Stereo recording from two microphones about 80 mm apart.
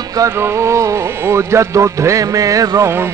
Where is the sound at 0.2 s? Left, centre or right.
Right.